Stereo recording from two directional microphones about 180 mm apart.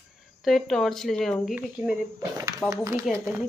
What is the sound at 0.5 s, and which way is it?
Speech, centre (ahead or behind).